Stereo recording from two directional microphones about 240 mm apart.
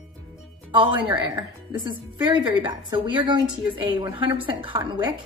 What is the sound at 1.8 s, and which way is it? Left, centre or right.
A woman's voice, centre.